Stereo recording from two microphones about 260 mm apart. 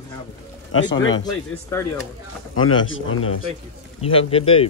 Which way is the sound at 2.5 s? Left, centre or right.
Left.